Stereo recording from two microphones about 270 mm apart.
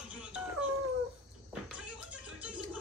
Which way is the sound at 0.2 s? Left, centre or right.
Centre.